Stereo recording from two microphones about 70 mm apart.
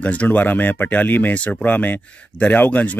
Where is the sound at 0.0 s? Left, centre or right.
Left.